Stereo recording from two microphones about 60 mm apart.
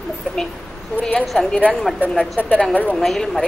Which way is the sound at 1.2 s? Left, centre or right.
Centre.